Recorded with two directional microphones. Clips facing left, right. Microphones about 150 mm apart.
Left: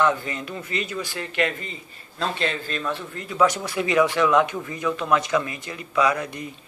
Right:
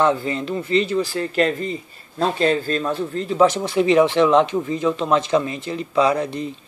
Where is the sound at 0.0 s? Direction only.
30° right (ahead or behind).